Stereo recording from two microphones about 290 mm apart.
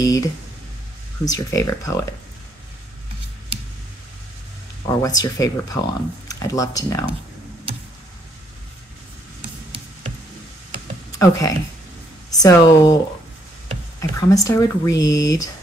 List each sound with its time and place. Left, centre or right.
0.0 s speech: centre
4.8 s speech: centre
11.1 s speech: centre
13.9 s speech: centre